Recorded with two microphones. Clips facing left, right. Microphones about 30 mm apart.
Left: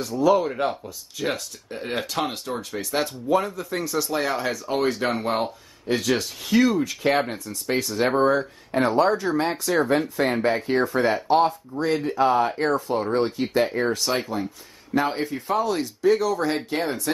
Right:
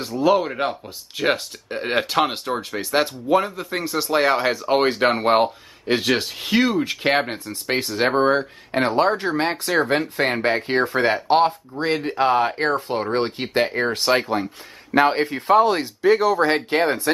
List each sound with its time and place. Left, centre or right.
0.2 s speech: right